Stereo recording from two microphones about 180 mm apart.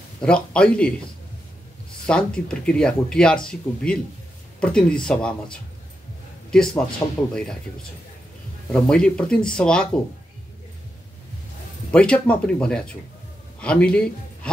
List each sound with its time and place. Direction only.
0.2 s speech: 5° left (ahead or behind)
2.0 s speech: 5° left (ahead or behind)
7.0 s speech: 15° left (ahead or behind)
8.7 s speech: 5° left (ahead or behind)
11.9 s speech: 5° left (ahead or behind)